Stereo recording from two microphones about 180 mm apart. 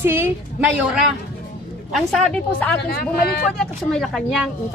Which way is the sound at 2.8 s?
60° left (ahead or behind).